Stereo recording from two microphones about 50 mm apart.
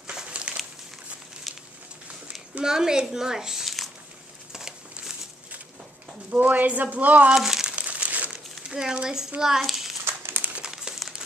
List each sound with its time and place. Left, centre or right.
0.3 s crumpling: right
2.6 s a woman's voice: centre
4.5 s a sound: centre
6.3 s speech: right
7.3 s crumpling: centre
7.7 s crumpling: right
8.6 s a woman's voice: centre
10.5 s crumpling: centre